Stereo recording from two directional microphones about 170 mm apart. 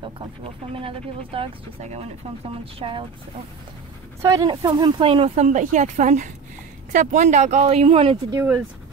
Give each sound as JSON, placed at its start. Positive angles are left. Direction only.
{"t": 0.0, "sound": "speech", "side_deg": -30}
{"t": 4.2, "sound": "speech", "side_deg": -20}